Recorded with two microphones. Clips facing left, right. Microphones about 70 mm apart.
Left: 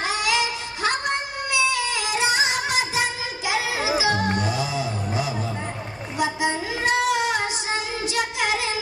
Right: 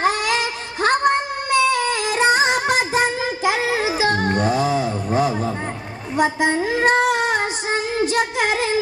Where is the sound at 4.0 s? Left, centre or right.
Right.